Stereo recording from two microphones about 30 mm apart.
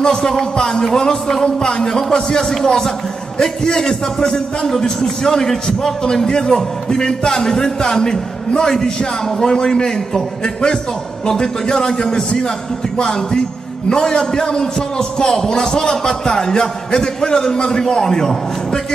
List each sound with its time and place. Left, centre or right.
0.0 s a man's voice: left